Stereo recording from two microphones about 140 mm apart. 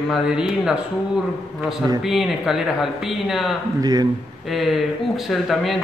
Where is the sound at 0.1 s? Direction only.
5° right (ahead or behind).